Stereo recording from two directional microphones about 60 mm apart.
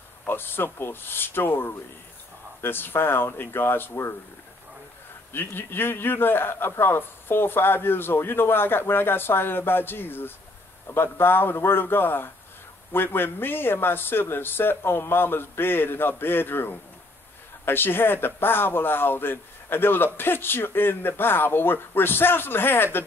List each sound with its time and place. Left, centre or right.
0.3 s a man's voice: left
5.3 s a man's voice: left